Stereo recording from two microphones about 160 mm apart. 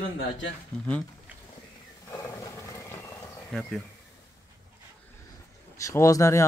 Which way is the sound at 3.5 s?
5° left (ahead or behind).